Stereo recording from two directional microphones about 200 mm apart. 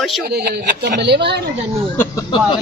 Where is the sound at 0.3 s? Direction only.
50° right (ahead or behind).